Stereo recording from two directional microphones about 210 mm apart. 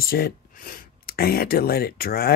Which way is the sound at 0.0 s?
45° left (ahead or behind).